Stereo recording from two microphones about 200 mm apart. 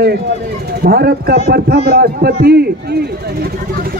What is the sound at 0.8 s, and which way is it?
A man's voice, 50° right (ahead or behind).